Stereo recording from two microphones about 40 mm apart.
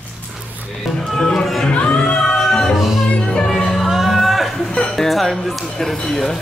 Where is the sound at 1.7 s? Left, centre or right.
Left.